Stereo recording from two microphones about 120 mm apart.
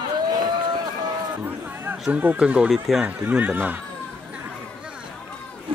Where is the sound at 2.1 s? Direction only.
15° right (ahead or behind).